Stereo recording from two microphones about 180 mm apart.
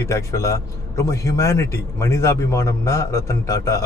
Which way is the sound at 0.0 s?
15° left (ahead or behind).